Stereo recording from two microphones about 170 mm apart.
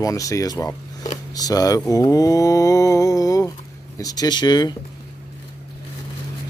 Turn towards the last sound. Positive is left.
turn(degrees=25)  # may be behind; listen again after turning